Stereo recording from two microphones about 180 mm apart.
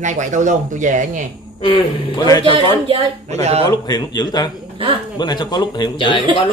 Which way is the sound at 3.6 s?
20° left (ahead or behind).